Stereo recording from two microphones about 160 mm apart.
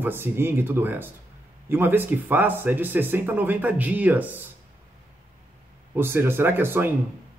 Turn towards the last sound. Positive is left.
turn(degrees=-15)  # may be behind; listen again after turning